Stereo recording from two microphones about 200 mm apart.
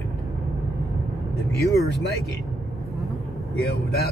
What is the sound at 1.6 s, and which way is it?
Speech, 15° left (ahead or behind).